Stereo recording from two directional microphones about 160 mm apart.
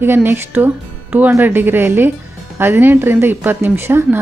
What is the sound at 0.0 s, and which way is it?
A woman's voice, 15° right (ahead or behind).